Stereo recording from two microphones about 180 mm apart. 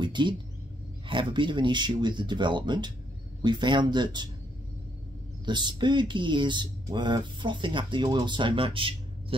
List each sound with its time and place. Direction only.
0.0 s speech: 25° right (ahead or behind)
5.4 s speech: 25° right (ahead or behind)